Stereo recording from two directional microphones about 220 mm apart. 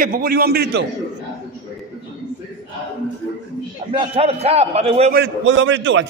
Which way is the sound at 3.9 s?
25° right (ahead or behind).